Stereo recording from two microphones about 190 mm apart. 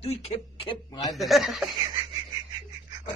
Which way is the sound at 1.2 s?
Centre (ahead or behind).